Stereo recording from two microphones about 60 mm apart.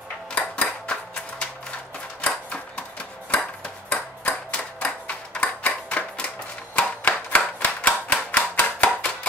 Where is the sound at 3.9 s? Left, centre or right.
Left.